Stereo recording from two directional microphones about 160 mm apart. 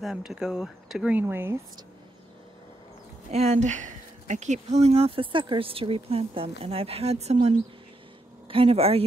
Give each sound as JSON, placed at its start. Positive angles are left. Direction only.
{"t": 0.0, "sound": "speech", "side_deg": 0}
{"t": 3.3, "sound": "speech", "side_deg": -45}